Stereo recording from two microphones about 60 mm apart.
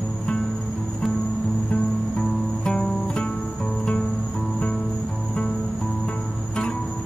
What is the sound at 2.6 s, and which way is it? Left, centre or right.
Music, centre.